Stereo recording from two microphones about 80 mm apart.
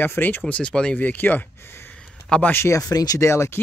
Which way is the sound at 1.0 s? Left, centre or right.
Left.